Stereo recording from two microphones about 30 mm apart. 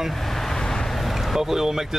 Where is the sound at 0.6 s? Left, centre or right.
Left.